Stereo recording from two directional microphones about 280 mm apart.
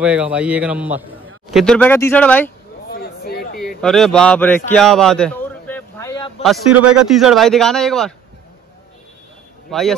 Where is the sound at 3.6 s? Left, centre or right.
Centre.